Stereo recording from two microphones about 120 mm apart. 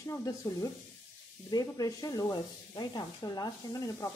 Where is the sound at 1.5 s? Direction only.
30° left (ahead or behind).